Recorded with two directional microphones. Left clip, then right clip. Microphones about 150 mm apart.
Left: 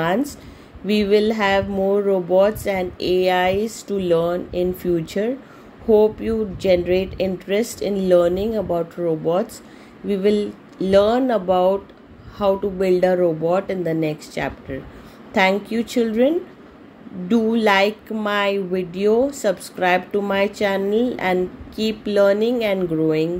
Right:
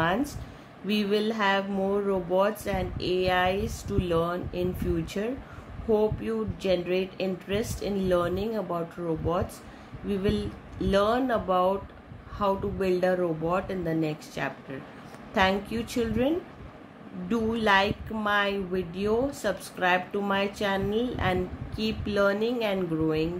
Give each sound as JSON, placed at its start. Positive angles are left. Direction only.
{"t": 0.0, "sound": "speech", "side_deg": 35}